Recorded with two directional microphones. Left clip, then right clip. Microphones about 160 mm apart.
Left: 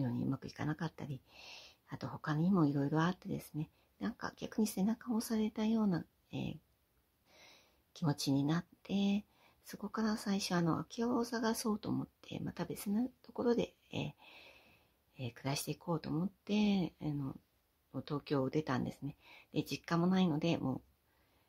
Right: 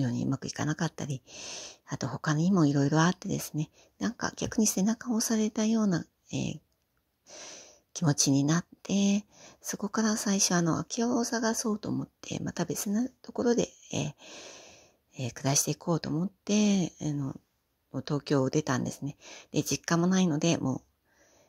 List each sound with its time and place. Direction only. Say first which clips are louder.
0.0 s speech: right 7 dB; 35° right (ahead or behind)
12.2 s speech: right 9 dB; 40° right (ahead or behind)